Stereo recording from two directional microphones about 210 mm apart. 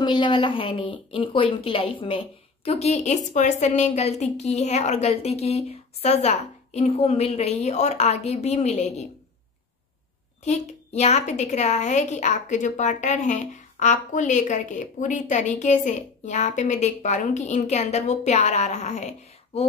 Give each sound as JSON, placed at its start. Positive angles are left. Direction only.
{"t": 0.0, "sound": "a woman's voice", "side_deg": 20}
{"t": 10.4, "sound": "a woman's voice", "side_deg": 30}